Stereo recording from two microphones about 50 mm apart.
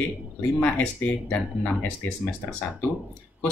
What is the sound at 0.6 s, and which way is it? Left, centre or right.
Speech, left.